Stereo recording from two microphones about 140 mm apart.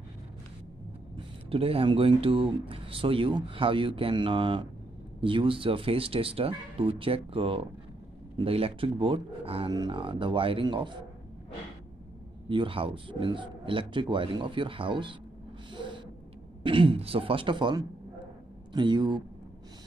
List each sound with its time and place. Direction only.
1.1 s speech: 45° right (ahead or behind)
9.7 s speech: 30° right (ahead or behind)
12.4 s speech: 40° right (ahead or behind)
15.7 s gasp: 35° right (ahead or behind)
16.6 s speech: 40° right (ahead or behind)